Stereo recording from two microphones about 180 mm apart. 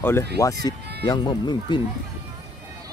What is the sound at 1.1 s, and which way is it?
Speech, 25° left (ahead or behind).